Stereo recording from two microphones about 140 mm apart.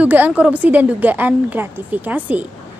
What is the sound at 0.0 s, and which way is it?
A woman's voice, 10° right (ahead or behind).